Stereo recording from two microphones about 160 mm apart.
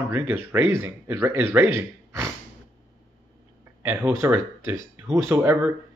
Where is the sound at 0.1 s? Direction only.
15° right (ahead or behind).